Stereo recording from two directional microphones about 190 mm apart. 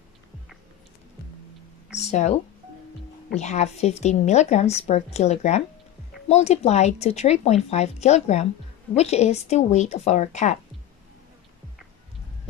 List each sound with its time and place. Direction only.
2.0 s a woman's voice: 35° left (ahead or behind)